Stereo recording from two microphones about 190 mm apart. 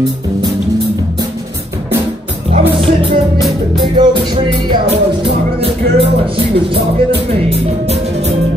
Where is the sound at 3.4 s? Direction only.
Centre (ahead or behind).